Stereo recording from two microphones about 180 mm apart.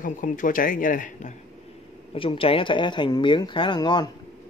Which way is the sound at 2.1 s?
30° left (ahead or behind).